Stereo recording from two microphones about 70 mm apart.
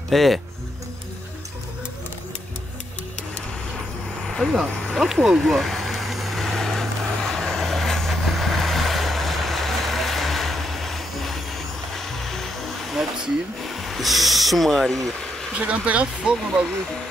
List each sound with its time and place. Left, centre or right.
0.1 s speech: centre
4.8 s vehicle: centre
12.9 s speech: centre
15.5 s speech: centre